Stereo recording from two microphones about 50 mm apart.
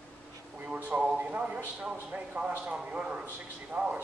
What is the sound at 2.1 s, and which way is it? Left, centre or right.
A man's voice, right.